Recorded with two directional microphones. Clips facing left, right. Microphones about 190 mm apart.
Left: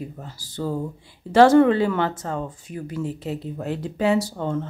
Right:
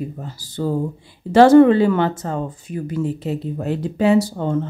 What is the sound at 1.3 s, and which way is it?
Speech, 10° right (ahead or behind).